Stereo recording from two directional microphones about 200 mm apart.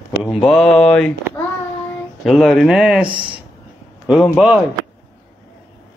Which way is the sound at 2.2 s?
Centre (ahead or behind).